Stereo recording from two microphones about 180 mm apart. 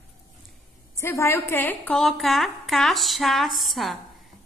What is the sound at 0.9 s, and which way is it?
A woman's voice, 15° left (ahead or behind).